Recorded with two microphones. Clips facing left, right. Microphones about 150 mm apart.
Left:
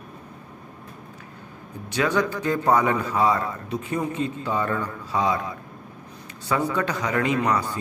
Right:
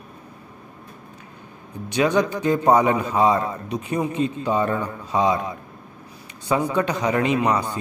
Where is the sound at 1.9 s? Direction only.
20° right (ahead or behind).